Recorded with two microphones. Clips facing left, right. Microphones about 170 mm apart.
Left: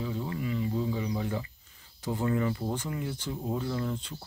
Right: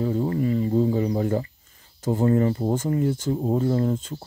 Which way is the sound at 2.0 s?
45° right (ahead or behind).